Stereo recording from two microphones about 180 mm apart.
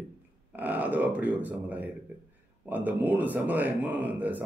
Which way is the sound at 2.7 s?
10° right (ahead or behind).